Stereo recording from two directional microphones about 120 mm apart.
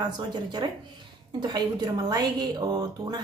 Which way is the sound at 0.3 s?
40° right (ahead or behind).